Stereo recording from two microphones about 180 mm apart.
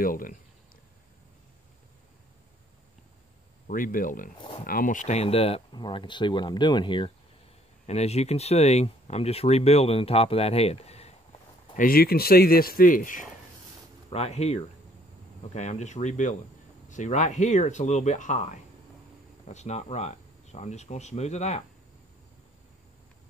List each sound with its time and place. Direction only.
0.0 s speech: 50° left (ahead or behind)
3.6 s speech: 50° left (ahead or behind)
4.4 s speech: 30° left (ahead or behind)
4.6 s speech: 50° left (ahead or behind); by 7.1 s 25° left (ahead or behind)
7.8 s speech: 35° left (ahead or behind)
11.7 s speech: 55° left (ahead or behind)
14.1 s speech: 35° left (ahead or behind)